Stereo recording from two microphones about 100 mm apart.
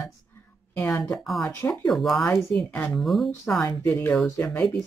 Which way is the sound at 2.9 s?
Centre (ahead or behind).